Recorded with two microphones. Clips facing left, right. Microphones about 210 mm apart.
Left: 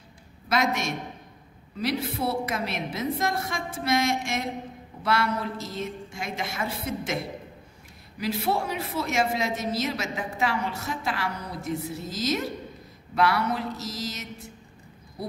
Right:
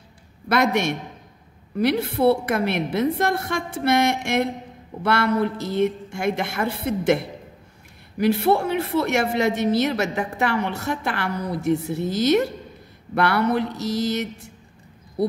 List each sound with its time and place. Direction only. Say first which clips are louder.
0.5 s a woman's voice: right 6 dB; 60° right (ahead or behind)
8.2 s a woman's voice: right 8 dB; 60° right (ahead or behind)